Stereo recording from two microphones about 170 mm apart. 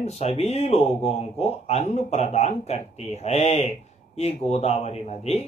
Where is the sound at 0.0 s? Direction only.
40° left (ahead or behind).